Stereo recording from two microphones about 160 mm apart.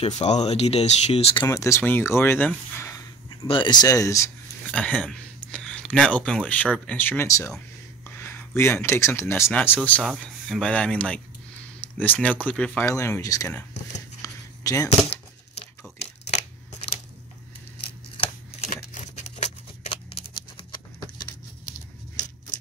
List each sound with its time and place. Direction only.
0.0 s speech: 45° left (ahead or behind)
1.5 s speech: 20° left (ahead or behind)
3.3 s speech: 30° left (ahead or behind)
4.6 s speech: 5° left (ahead or behind)
14.2 s a sound: 20° left (ahead or behind)
18.7 s a sound: 45° left (ahead or behind)